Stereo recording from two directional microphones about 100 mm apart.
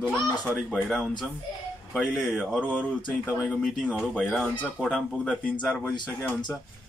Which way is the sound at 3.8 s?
5° right (ahead or behind).